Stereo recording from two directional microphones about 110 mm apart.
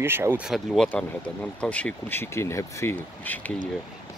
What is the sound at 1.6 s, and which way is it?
Speech, 15° left (ahead or behind).